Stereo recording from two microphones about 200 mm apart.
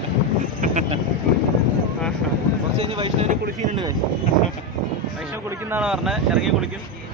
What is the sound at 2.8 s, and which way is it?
Speech, 30° right (ahead or behind).